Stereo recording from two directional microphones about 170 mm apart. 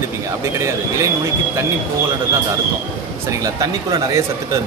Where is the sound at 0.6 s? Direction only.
15° right (ahead or behind).